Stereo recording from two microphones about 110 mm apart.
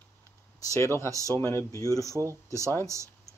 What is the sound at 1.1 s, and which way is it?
Speech, 30° right (ahead or behind).